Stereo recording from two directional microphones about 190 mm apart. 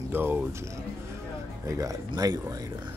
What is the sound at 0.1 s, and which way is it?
Speech, 10° right (ahead or behind).